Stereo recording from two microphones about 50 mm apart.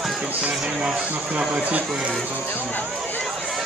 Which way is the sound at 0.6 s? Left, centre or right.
Centre.